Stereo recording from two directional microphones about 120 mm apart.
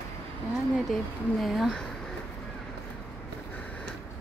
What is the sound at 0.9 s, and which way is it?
Speech, centre (ahead or behind).